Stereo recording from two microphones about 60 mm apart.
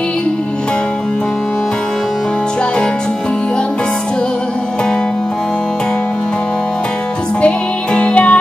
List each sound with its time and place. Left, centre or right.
7.4 s music: left